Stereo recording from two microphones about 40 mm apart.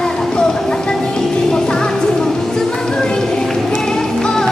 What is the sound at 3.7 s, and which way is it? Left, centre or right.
Music, centre.